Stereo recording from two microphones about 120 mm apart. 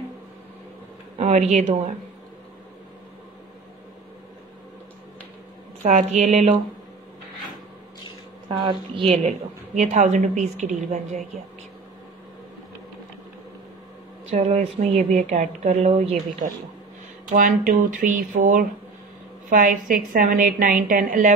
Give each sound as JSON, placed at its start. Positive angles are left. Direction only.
{"t": 1.1, "sound": "a woman's voice", "side_deg": -75}
{"t": 5.8, "sound": "speech", "side_deg": -80}
{"t": 8.5, "sound": "speech", "side_deg": -40}
{"t": 9.8, "sound": "a woman's voice", "side_deg": -85}
{"t": 14.3, "sound": "speech", "side_deg": -70}
{"t": 17.4, "sound": "a woman's voice", "side_deg": -90}